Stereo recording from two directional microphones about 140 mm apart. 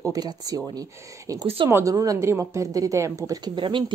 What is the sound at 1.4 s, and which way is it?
Speech, 40° right (ahead or behind).